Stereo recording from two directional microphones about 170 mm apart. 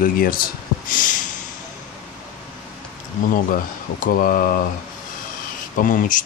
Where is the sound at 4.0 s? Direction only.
55° left (ahead or behind).